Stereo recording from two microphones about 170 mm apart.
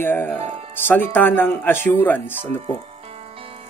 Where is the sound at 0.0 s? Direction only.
10° left (ahead or behind).